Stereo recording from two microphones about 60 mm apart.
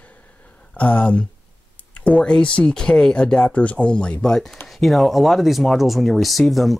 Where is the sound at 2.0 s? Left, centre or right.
Centre.